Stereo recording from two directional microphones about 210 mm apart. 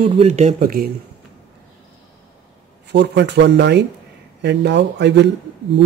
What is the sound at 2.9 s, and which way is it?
Speech, 55° right (ahead or behind).